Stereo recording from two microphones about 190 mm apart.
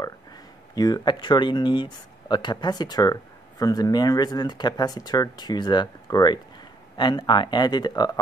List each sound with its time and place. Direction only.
0.7 s speech: 20° left (ahead or behind)